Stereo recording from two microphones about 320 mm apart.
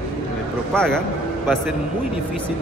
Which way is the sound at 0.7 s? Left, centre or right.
Centre.